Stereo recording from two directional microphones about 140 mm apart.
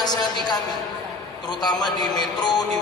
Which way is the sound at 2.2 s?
30° left (ahead or behind).